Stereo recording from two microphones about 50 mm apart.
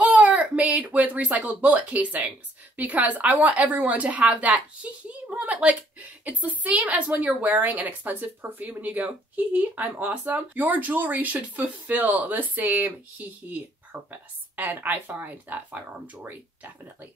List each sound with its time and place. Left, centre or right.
0.0 s speech: right